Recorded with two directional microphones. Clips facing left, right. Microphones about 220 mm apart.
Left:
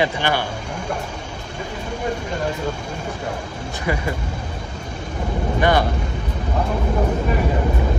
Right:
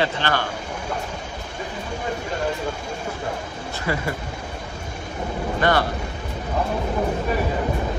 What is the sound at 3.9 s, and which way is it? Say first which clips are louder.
Speech: left 2 dB; 15° left (ahead or behind).